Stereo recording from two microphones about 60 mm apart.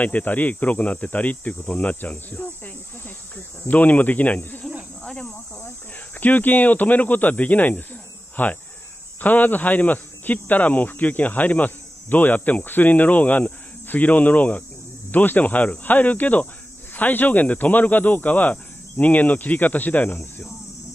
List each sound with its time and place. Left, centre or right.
0.0 s speech: left
5.0 s cricket: centre
6.1 s speech: left